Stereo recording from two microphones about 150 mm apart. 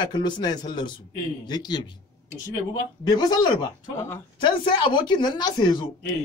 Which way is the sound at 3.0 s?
25° left (ahead or behind).